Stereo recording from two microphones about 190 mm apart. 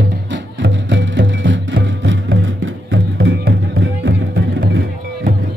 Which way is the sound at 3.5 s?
65° right (ahead or behind).